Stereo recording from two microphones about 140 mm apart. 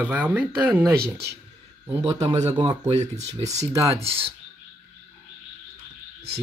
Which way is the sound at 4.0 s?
45° right (ahead or behind).